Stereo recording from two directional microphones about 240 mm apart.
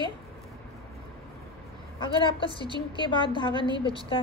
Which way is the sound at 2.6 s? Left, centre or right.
Centre.